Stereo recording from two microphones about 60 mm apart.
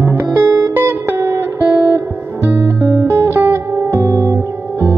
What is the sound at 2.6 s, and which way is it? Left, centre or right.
Guitar, right.